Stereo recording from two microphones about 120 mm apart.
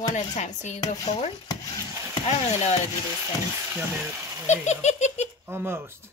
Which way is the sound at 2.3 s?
65° left (ahead or behind).